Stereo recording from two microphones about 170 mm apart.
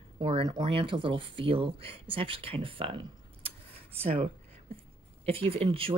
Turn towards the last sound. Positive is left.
turn(degrees=-35)  # may be behind; listen again after turning